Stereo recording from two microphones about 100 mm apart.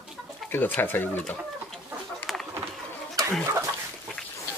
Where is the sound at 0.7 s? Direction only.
20° left (ahead or behind).